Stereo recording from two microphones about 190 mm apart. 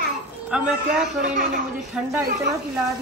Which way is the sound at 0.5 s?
5° right (ahead or behind).